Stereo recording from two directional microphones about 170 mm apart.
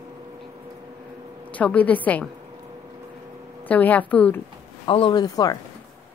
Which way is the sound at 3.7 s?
10° left (ahead or behind).